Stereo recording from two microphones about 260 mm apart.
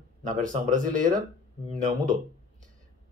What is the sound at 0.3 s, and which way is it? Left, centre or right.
Speech, right.